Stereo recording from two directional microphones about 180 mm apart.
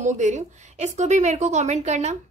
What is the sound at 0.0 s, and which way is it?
A woman's voice, 40° right (ahead or behind).